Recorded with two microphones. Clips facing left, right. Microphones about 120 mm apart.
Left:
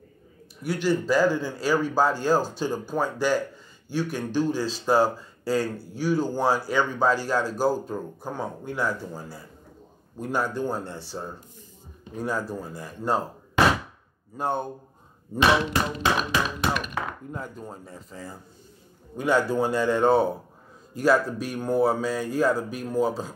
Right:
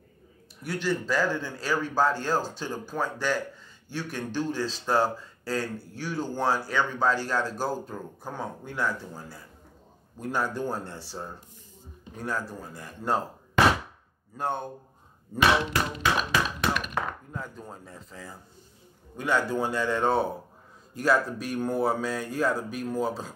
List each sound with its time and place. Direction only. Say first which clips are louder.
0.7 s speech: left 5 dB; 5° left (ahead or behind)
12.2 s speech: left 4 dB; 10° left (ahead or behind)
14.3 s speech: left 3 dB; 5° left (ahead or behind)
15.3 s speech: left 2 dB; 25° left (ahead or behind)
17.3 s speech: left 3 dB; 15° left (ahead or behind)